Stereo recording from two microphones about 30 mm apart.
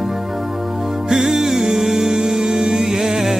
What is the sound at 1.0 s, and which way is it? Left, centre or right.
Music, centre.